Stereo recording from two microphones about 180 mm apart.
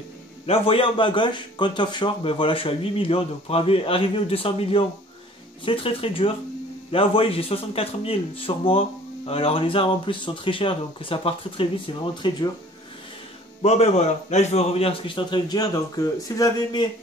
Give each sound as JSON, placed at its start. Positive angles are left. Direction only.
{"t": 0.5, "sound": "a man's voice", "side_deg": 30}
{"t": 13.6, "sound": "a man's voice", "side_deg": 35}